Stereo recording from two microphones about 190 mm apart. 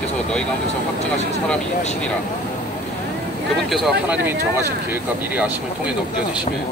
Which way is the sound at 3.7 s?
Centre (ahead or behind).